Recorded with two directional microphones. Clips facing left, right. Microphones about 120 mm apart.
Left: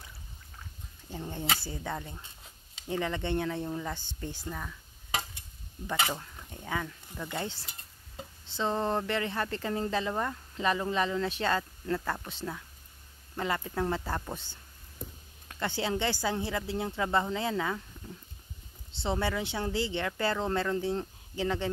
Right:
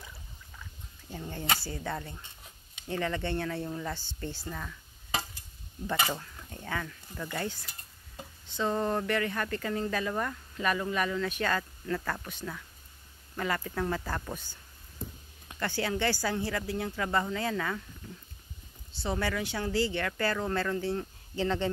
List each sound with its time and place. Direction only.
1.3 s speech: 20° left (ahead or behind)
1.8 s speech: 10° left (ahead or behind)
6.1 s speech: 10° left (ahead or behind); by 14.6 s 25° left (ahead or behind)
15.6 s speech: 20° left (ahead or behind)
18.9 s speech: 25° left (ahead or behind)
21.4 s speech: 5° left (ahead or behind)